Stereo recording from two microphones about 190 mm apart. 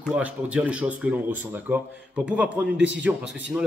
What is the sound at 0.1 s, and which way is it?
A man's voice, 5° right (ahead or behind).